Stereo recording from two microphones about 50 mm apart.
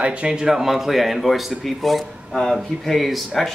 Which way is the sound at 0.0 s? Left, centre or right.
Right.